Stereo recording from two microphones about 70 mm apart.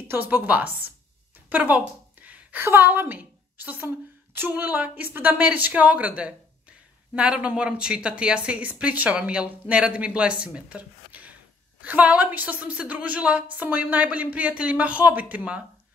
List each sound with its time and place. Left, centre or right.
0.1 s speech: right
2.2 s a sound: right
2.6 s a woman's voice: right